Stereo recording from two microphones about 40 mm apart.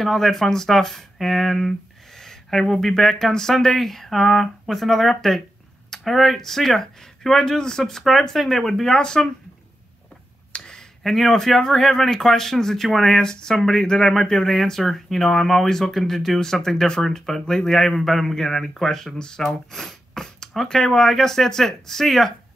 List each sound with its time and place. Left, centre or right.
0.0 s speech: centre
7.3 s speech: centre
8.0 s speech: centre
11.1 s speech: centre
13.2 s speech: centre
19.1 s speech: centre